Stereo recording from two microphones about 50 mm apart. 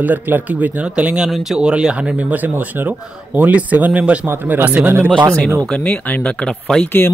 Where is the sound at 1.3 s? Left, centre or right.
Centre.